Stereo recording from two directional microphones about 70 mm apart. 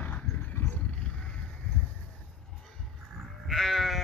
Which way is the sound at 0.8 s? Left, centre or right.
Centre.